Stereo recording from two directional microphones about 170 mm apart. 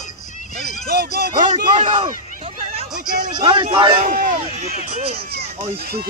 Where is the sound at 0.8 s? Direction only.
65° right (ahead or behind).